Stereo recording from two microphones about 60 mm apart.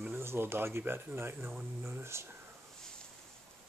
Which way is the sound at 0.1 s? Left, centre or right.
Right.